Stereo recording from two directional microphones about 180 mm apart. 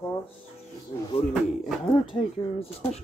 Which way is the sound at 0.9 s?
35° left (ahead or behind).